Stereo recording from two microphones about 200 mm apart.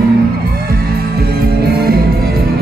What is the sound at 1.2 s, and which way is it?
Music, 50° right (ahead or behind).